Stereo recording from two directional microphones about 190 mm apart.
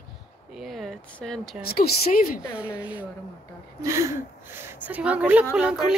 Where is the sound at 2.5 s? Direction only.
5° right (ahead or behind).